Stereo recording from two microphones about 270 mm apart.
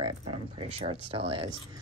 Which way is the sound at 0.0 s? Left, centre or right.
Centre.